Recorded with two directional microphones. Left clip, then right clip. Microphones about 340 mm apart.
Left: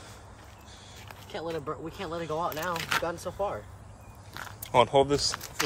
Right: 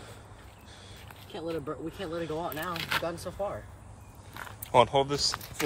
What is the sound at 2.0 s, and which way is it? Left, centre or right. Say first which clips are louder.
Speech: left 3 dB; centre.